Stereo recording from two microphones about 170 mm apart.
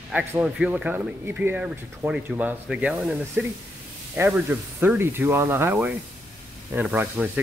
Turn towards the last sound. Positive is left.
turn(degrees=-10)  # may be behind; listen again after turning